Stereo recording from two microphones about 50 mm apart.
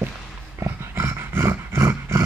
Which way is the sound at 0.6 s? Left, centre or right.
Right.